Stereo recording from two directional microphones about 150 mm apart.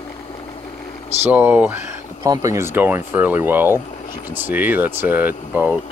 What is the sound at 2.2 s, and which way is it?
Speech, 25° right (ahead or behind).